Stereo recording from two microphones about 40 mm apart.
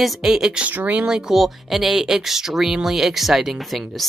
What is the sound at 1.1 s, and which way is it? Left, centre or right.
Speech, centre.